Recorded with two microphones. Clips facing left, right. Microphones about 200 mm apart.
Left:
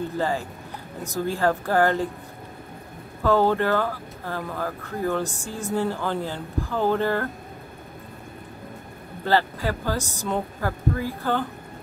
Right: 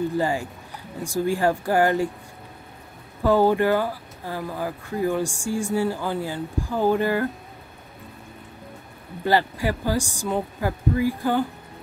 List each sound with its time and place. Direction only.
0.2 s speech: 15° right (ahead or behind)
3.3 s speech: 15° right (ahead or behind)
9.2 s speech: 15° right (ahead or behind)